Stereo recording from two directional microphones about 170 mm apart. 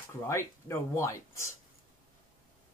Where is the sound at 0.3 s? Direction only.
15° left (ahead or behind).